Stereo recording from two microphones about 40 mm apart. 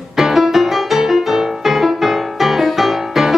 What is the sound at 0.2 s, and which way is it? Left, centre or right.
Music, centre.